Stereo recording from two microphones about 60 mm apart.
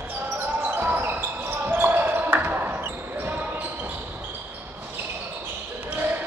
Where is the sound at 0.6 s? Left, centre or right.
Right.